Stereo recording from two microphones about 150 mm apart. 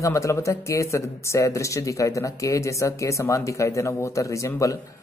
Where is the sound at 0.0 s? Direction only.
20° left (ahead or behind).